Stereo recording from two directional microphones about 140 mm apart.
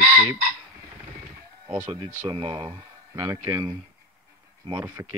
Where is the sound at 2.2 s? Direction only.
30° right (ahead or behind).